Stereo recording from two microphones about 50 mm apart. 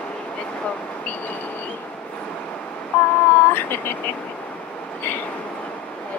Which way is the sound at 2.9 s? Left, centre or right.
Left.